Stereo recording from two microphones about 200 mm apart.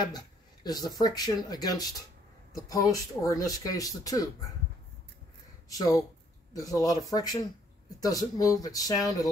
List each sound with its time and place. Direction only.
0.7 s speech: 20° left (ahead or behind)
5.7 s speech: 15° left (ahead or behind)